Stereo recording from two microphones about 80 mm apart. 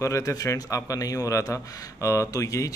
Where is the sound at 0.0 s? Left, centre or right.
Left.